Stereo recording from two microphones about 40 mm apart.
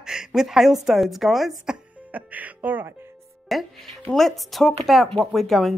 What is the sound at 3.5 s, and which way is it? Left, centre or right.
A woman's voice, centre.